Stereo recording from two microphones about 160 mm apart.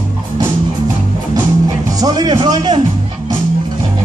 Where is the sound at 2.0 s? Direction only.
25° right (ahead or behind).